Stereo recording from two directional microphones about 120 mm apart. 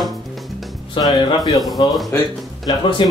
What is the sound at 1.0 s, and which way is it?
Speech, 45° left (ahead or behind).